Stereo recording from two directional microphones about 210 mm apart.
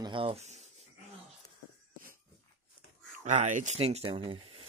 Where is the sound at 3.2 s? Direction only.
35° right (ahead or behind).